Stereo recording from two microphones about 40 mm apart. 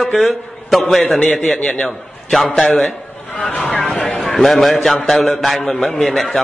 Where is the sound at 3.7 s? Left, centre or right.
Centre.